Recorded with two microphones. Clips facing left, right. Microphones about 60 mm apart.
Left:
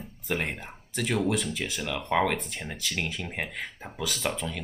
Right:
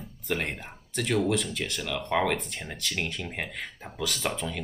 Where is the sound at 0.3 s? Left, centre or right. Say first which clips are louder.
Even; centre.